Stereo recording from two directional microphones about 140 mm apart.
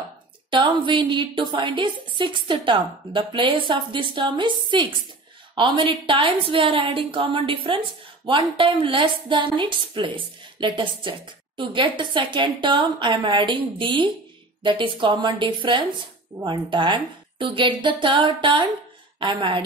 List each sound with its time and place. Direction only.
0.5 s a woman's voice: 35° right (ahead or behind)